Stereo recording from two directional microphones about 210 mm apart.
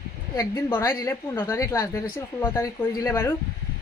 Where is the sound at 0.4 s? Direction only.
15° left (ahead or behind).